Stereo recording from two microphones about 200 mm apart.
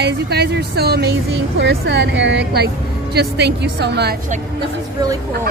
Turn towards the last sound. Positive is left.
turn(degrees=-55)  # may be behind; listen again after turning